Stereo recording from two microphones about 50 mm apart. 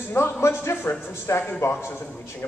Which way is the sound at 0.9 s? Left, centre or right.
Left.